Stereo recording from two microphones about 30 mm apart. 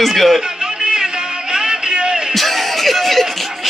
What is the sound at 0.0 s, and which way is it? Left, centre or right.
Speech, centre.